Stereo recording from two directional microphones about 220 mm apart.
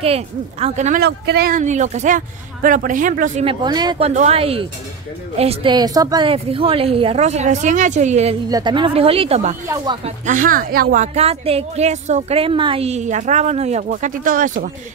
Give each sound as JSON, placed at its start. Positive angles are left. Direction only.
{"t": 0.0, "sound": "speech", "side_deg": -30}
{"t": 1.0, "sound": "speech", "side_deg": -45}
{"t": 3.6, "sound": "a woman's voice", "side_deg": -20}
{"t": 4.1, "sound": "a woman's voice", "side_deg": -30}
{"t": 8.5, "sound": "speech", "side_deg": -20}